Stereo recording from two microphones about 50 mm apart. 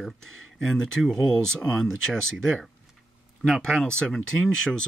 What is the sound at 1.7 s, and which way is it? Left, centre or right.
Speech, centre.